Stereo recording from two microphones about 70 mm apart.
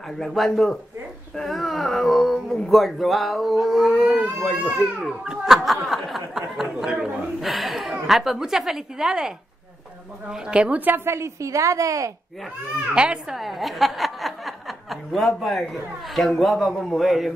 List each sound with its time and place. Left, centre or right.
0.2 s speech: centre
4.1 s baby cry: centre
5.5 s snicker: centre
6.7 s a woman's voice: centre
10.3 s a woman's voice: centre
11.1 s a woman's voice: right
12.9 s a woman's voice: centre
13.4 s speech: centre